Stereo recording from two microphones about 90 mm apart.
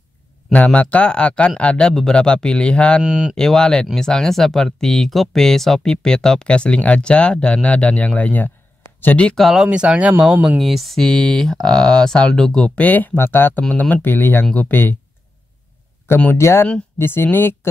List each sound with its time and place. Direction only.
0.7 s speech: 15° left (ahead or behind)
3.0 s speech: 10° right (ahead or behind)
3.3 s speech: 5° left (ahead or behind)
9.4 s speech: centre (ahead or behind)
9.7 s speech: 15° right (ahead or behind)
10.6 s speech: centre (ahead or behind); by 15.0 s 20° left (ahead or behind)
16.3 s speech: 30° left (ahead or behind)